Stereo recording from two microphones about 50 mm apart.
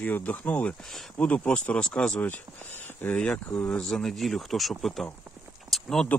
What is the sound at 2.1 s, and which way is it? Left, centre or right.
Speech, left.